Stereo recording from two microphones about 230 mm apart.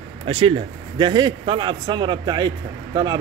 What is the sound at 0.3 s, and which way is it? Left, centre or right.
A man's voice, right.